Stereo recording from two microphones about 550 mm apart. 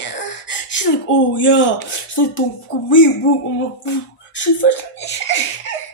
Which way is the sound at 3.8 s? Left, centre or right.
Centre.